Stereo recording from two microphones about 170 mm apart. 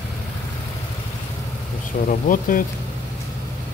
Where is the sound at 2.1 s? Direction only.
55° left (ahead or behind).